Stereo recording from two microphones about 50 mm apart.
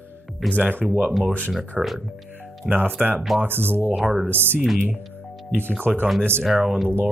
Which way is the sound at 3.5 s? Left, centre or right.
Right.